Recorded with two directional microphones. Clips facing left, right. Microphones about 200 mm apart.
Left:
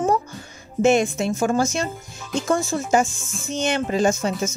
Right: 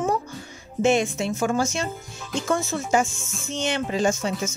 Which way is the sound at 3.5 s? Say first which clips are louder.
Left 3 dB; 45° left (ahead or behind).